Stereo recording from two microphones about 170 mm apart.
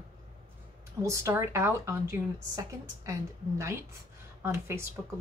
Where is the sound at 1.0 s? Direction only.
20° right (ahead or behind).